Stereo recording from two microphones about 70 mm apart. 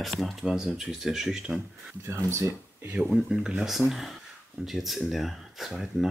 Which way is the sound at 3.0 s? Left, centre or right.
Centre.